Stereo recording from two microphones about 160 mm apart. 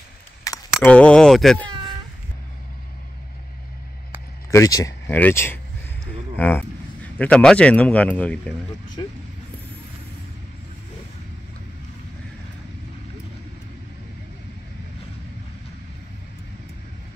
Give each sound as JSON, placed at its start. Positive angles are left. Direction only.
{"t": 0.5, "sound": "keys jangling", "side_deg": 20}
{"t": 0.8, "sound": "speech", "side_deg": 5}
{"t": 1.7, "sound": "a sound", "side_deg": -35}
{"t": 4.5, "sound": "speech", "side_deg": 20}